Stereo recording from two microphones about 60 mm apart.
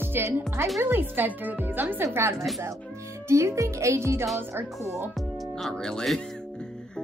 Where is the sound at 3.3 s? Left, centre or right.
Right.